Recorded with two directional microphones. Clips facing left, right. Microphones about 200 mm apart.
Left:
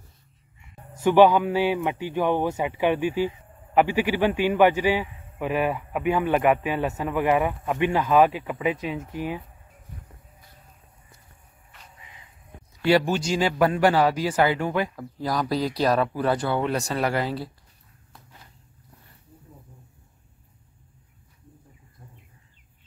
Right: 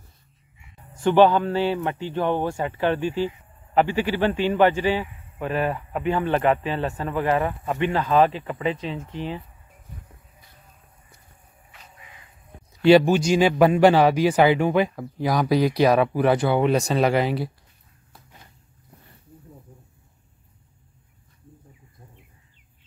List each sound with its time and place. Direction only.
1.0 s speech: 10° left (ahead or behind)
12.8 s speech: 20° right (ahead or behind)